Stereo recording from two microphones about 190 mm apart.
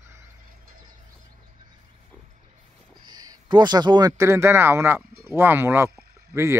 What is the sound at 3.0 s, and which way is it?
Speech, 20° right (ahead or behind).